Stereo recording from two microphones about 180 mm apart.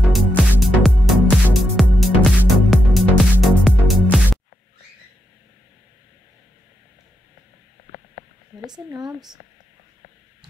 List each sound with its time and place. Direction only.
0.1 s music: centre (ahead or behind)
8.6 s speech: 20° right (ahead or behind)